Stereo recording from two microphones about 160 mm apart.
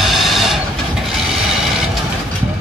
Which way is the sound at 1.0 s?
Centre (ahead or behind).